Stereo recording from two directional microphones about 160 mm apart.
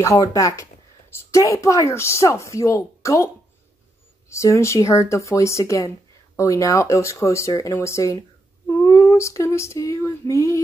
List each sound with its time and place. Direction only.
0.0 s speech: 20° left (ahead or behind)
4.3 s speech: 20° left (ahead or behind)
8.6 s female singing: 15° left (ahead or behind)